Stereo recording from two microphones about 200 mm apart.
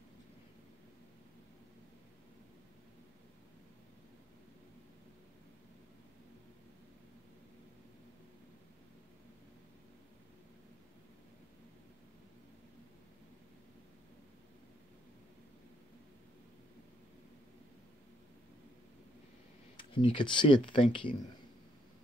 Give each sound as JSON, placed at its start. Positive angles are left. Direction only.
{"t": 19.8, "sound": "speech", "side_deg": 25}